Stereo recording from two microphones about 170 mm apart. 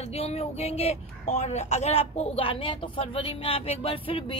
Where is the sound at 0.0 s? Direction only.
40° left (ahead or behind).